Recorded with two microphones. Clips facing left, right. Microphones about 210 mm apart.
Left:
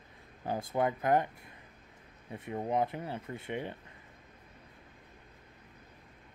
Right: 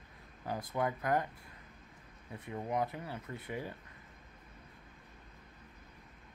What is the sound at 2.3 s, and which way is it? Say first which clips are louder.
Speech: left 4 dB; 25° left (ahead or behind).